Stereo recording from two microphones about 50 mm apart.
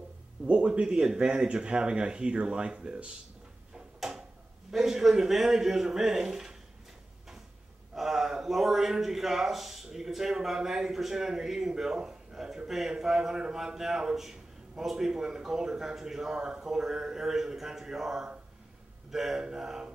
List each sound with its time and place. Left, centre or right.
0.5 s speech: right
4.6 s a man's voice: centre
7.9 s a man's voice: centre